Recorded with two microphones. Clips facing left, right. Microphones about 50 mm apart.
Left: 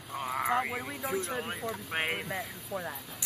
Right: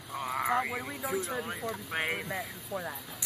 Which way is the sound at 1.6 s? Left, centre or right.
Centre.